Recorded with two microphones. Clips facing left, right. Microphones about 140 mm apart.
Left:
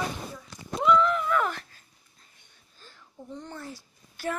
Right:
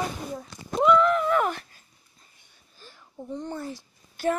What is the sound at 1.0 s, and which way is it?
Speech, 55° right (ahead or behind).